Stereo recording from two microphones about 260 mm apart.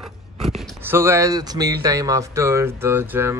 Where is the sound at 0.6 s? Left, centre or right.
Centre.